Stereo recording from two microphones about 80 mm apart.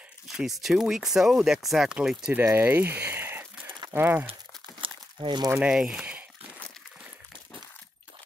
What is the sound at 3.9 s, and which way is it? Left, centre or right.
Speech, right.